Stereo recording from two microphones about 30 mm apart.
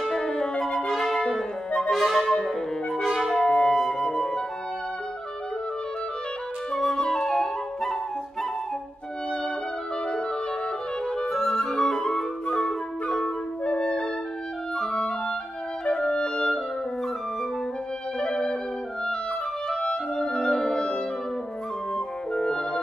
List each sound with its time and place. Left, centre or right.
0.2 s music: left
0.7 s music: centre
2.0 s brass instrument: centre
2.4 s music: centre
3.4 s flute: left
6.8 s flute: centre
11.2 s music: centre
11.8 s flute: centre
13.7 s music: left
14.8 s clarinet: centre
15.8 s music: left
18.3 s music: left
20.2 s music: left
22.3 s music: left